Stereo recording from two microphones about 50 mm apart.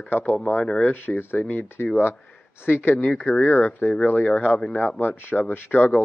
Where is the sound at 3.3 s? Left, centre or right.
Left.